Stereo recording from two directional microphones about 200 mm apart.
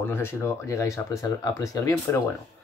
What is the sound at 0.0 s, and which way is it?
Speech, 10° left (ahead or behind).